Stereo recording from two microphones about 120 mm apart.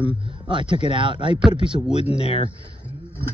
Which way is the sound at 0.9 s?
45° right (ahead or behind).